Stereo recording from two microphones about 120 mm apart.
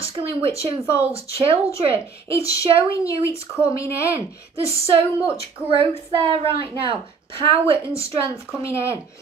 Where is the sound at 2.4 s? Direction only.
25° left (ahead or behind).